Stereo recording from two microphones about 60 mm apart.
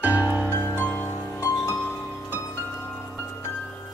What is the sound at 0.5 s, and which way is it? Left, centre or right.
Music, left.